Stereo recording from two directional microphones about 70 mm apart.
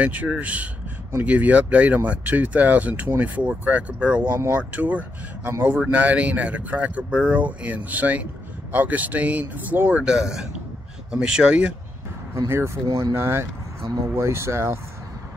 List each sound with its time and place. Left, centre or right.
0.0 s speech: right
12.4 s speech: right